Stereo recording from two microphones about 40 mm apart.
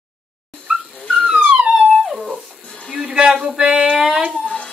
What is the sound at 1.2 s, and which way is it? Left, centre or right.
Dog, right.